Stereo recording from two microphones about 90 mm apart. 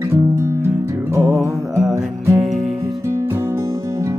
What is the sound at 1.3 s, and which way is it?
Music, centre (ahead or behind).